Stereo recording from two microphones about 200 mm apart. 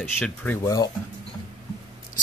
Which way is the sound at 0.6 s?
20° left (ahead or behind).